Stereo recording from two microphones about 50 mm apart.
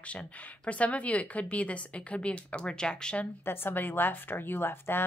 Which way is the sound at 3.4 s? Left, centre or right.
Left.